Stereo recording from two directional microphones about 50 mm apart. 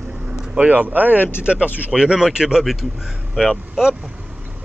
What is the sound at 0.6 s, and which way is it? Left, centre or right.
Speech, right.